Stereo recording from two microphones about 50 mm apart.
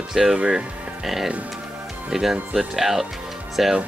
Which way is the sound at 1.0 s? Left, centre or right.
Centre.